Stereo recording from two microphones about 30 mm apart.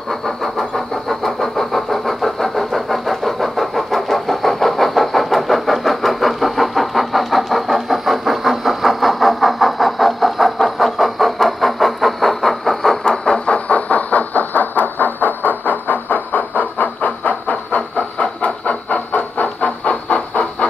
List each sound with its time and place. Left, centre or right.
0.1 s vehicle: centre
13.7 s train: left
18.1 s train: left